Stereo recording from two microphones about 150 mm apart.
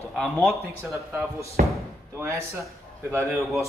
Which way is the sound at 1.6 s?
70° right (ahead or behind).